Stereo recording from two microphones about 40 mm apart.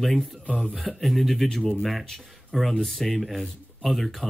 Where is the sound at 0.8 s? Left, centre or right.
Centre.